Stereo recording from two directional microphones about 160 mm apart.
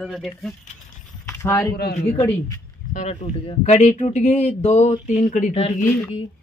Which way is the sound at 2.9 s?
45° left (ahead or behind).